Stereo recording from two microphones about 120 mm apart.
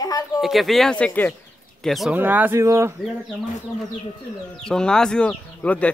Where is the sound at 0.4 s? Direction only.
Centre (ahead or behind).